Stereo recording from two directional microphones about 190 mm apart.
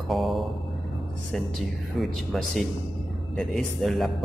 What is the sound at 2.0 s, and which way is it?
A man's voice, centre (ahead or behind).